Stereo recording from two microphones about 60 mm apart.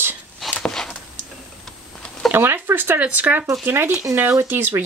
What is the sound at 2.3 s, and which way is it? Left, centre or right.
Speech, right.